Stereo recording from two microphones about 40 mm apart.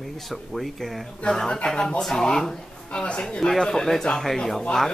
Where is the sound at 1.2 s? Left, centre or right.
Centre.